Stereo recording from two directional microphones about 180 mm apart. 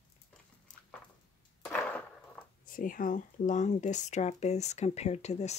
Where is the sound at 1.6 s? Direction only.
5° left (ahead or behind).